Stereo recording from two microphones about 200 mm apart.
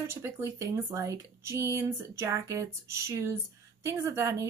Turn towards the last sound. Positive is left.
turn(degrees=-15)  # may be behind; listen again after turning